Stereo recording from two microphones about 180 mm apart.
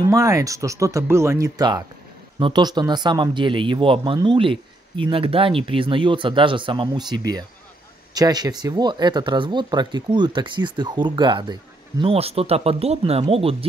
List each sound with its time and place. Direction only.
0.0 s speech: 20° right (ahead or behind)